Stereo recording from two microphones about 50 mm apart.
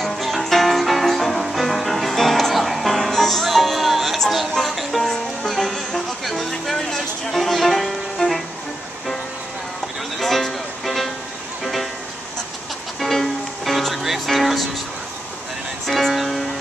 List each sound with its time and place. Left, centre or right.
0.0 s music: centre
10.1 s music: centre
13.0 s music: centre
15.9 s music: centre